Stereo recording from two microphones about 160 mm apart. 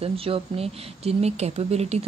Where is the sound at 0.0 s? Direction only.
35° right (ahead or behind).